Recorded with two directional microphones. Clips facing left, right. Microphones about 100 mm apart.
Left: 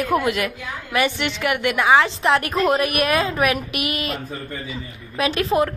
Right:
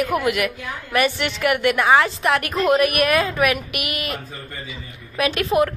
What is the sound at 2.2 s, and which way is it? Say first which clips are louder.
A woman's voice: left 1 dB; 30° left (ahead or behind).